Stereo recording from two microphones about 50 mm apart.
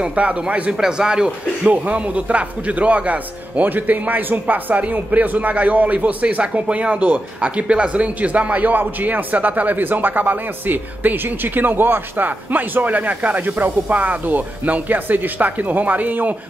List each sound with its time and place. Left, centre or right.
0.0 s a man's voice: right
0.7 s speech: centre
1.7 s speech: right